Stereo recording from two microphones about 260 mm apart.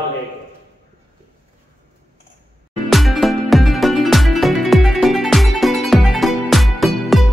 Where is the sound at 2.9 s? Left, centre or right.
Centre.